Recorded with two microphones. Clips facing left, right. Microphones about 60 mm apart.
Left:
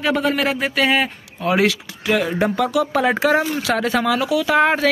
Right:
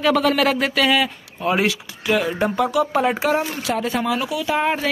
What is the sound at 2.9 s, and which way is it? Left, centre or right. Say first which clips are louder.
Speech: left 2 dB; left.